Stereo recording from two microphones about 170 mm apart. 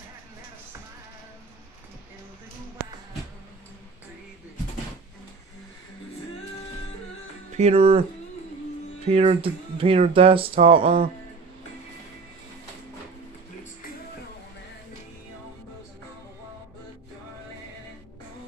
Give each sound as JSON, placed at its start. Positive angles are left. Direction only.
{"t": 7.5, "sound": "speech", "side_deg": -35}
{"t": 9.0, "sound": "speech", "side_deg": -35}